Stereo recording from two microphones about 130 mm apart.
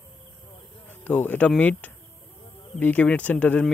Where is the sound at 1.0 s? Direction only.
10° left (ahead or behind).